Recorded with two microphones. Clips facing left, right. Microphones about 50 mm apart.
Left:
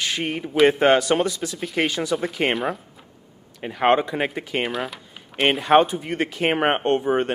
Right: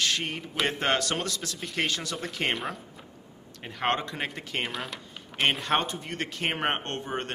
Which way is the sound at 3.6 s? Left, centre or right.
Centre.